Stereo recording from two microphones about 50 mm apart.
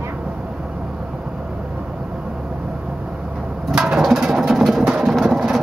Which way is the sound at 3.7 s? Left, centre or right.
Centre.